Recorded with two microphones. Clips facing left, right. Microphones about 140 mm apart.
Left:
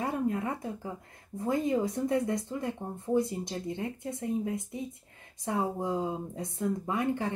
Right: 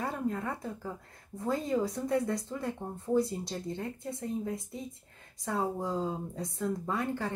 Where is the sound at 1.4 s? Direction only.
20° left (ahead or behind).